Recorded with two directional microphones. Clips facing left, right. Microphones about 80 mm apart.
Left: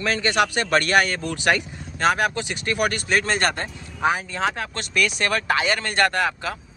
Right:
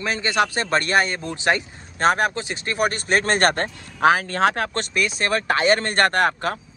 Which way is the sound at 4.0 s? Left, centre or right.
Right.